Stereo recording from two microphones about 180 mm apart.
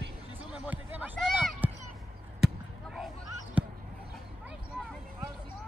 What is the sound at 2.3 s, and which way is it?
Basketball bounce, centre (ahead or behind).